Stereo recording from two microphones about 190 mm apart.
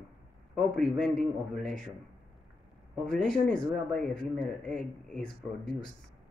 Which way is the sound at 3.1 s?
5° left (ahead or behind).